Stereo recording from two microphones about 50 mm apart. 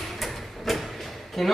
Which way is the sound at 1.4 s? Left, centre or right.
Centre.